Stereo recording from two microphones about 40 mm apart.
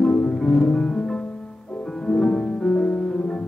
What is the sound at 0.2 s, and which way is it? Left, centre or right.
Music, centre.